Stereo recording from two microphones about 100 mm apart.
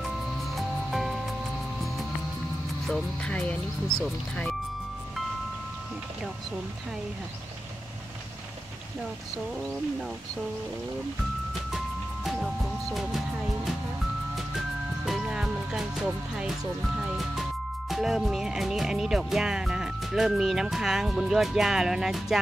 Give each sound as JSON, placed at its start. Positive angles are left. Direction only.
{"t": 0.6, "sound": "music", "side_deg": 0}
{"t": 2.9, "sound": "speech", "side_deg": 10}
{"t": 15.0, "sound": "music", "side_deg": -5}